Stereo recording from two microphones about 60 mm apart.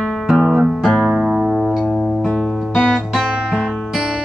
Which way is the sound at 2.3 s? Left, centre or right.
Centre.